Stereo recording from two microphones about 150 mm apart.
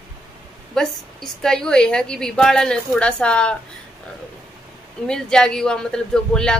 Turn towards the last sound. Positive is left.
turn(degrees=5)  # may be behind; listen again after turning